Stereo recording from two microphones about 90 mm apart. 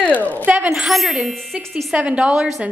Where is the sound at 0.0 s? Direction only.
15° left (ahead or behind).